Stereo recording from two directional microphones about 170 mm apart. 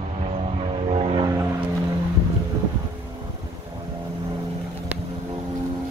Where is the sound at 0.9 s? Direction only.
35° right (ahead or behind).